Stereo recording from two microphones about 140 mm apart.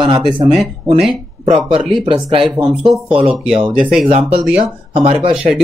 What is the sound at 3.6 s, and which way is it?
Speech, 40° right (ahead or behind).